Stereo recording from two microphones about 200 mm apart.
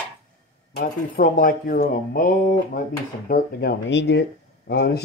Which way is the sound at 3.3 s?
55° left (ahead or behind).